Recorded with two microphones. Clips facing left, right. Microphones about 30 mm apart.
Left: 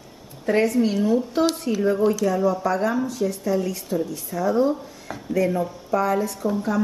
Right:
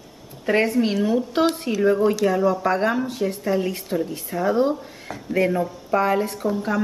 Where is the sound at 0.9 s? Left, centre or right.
Centre.